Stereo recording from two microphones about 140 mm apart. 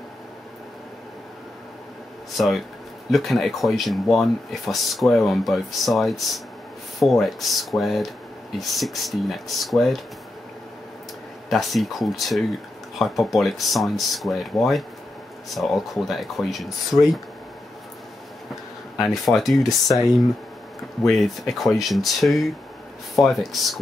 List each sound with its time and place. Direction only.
2.3 s speech: centre (ahead or behind)
11.5 s speech: centre (ahead or behind)
18.9 s speech: centre (ahead or behind)
21.1 s speech: centre (ahead or behind)